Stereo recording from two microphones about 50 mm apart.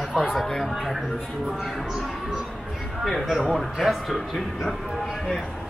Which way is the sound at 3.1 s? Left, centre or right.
Centre.